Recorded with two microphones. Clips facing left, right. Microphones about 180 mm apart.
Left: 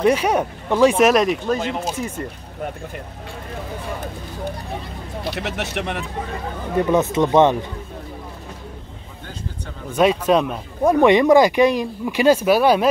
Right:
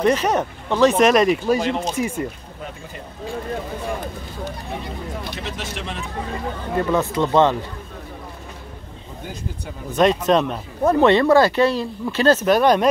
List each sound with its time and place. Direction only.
0.0 s speech: 10° left (ahead or behind)
5.3 s speech: 65° left (ahead or behind)
6.8 s speech: 20° left (ahead or behind)
9.9 s speech: 5° left (ahead or behind)